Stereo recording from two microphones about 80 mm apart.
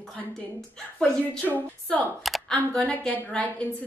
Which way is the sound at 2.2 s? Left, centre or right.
Centre.